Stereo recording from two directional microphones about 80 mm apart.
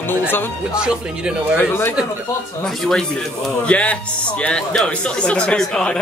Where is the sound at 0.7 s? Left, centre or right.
Centre.